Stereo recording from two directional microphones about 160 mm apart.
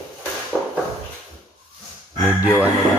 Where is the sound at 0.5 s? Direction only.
Centre (ahead or behind).